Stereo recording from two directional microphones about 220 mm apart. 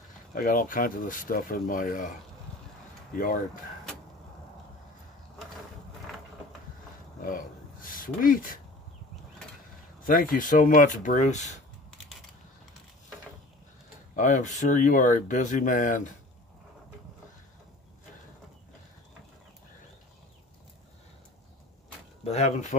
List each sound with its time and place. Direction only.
0.3 s speech: 40° left (ahead or behind)
3.2 s speech: 40° left (ahead or behind)
7.2 s speech: 40° left (ahead or behind)
10.0 s speech: 40° left (ahead or behind)
14.1 s speech: 35° left (ahead or behind)
22.2 s speech: 30° left (ahead or behind)